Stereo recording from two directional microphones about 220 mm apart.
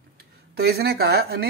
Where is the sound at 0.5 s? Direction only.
45° right (ahead or behind).